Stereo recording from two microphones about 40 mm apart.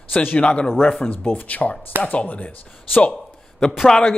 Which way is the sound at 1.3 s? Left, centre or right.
Left.